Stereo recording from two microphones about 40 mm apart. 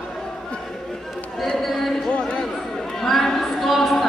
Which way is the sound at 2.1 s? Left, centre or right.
Left.